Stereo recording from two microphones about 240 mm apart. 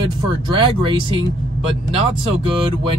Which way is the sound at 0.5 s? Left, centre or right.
Right.